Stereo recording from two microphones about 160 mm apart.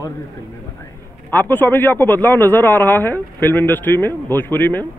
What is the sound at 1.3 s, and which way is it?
A man's voice, 10° left (ahead or behind).